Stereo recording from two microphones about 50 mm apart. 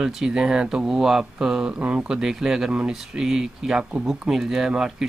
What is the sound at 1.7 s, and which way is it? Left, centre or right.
Speech, right.